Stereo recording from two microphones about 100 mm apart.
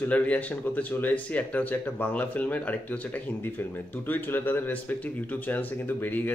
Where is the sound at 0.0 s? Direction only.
15° left (ahead or behind).